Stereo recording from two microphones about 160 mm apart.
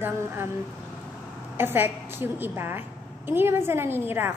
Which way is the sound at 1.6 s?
15° right (ahead or behind).